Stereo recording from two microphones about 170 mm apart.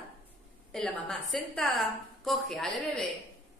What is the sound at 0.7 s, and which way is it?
A woman's voice, 5° left (ahead or behind).